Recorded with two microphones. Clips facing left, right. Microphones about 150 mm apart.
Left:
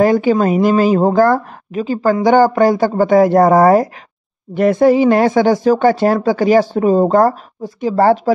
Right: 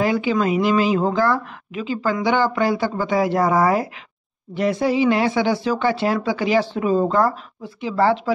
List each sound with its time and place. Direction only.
0.0 s a woman's voice: 45° left (ahead or behind)